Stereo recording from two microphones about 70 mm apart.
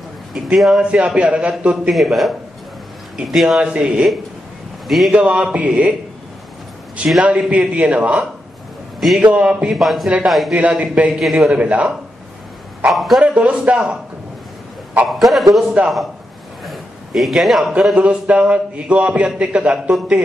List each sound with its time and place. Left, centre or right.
0.3 s a man's voice: centre
4.8 s a man's voice: centre
5.1 s a man's voice: centre
7.2 s a man's voice: centre
9.8 s a man's voice: centre
10.5 s a man's voice: centre
11.5 s a man's voice: centre
12.8 s a man's voice: centre
13.2 s a man's voice: centre
15.0 s a man's voice: centre
17.9 s a man's voice: centre